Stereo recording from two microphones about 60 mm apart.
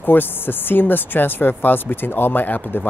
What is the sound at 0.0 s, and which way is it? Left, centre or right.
Speech, left.